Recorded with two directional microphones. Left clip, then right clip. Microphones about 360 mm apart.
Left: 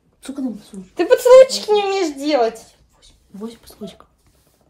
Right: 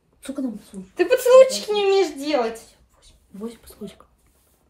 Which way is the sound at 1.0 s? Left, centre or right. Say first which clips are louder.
Left 4 dB; left.